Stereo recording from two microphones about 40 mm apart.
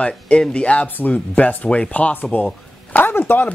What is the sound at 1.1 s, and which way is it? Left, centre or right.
Speech, left.